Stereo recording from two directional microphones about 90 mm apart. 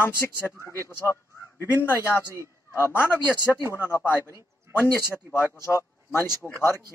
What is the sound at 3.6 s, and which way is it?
Speech, 25° right (ahead or behind).